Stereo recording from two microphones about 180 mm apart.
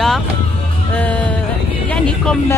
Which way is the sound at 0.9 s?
10° left (ahead or behind).